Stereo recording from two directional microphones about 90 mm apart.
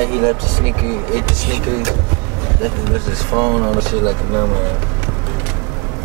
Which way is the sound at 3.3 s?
15° right (ahead or behind).